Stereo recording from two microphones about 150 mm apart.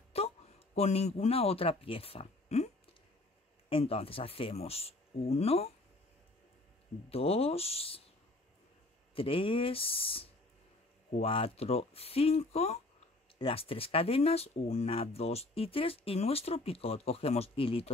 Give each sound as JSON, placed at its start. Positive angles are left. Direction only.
{"t": 0.1, "sound": "a sound", "side_deg": 40}
{"t": 0.7, "sound": "speech", "side_deg": 45}
{"t": 7.1, "sound": "speech", "side_deg": 40}
{"t": 9.1, "sound": "speech", "side_deg": 35}